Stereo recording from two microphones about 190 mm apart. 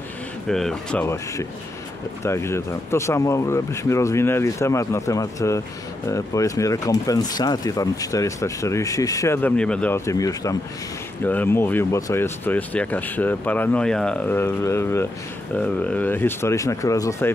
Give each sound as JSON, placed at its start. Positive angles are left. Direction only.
{"t": 0.5, "sound": "speech", "side_deg": 5}